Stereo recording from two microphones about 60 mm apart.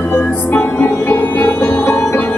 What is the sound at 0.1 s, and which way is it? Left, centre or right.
Music, left.